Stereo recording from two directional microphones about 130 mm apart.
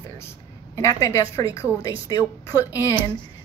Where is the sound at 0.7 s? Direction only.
25° left (ahead or behind).